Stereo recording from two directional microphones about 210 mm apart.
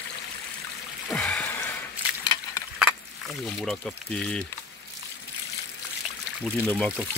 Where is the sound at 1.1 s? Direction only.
5° left (ahead or behind).